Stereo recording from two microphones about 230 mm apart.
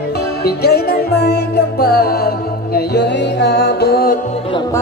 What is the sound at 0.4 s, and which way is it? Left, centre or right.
Music, left.